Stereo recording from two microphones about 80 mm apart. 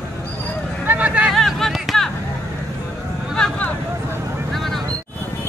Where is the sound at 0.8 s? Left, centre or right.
Centre.